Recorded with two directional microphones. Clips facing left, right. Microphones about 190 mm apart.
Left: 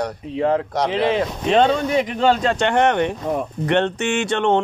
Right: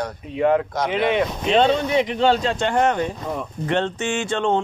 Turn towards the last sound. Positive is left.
turn(degrees=65)  # may be behind; listen again after turning